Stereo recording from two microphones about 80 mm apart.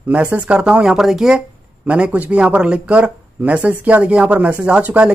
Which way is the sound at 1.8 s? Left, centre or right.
Centre.